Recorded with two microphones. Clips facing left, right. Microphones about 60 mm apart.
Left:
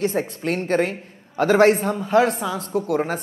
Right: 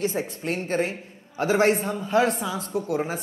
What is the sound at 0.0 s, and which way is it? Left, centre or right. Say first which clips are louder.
Speech: left 4 dB; left.